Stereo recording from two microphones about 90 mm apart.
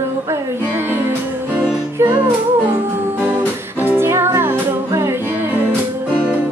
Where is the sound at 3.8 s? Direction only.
25° right (ahead or behind).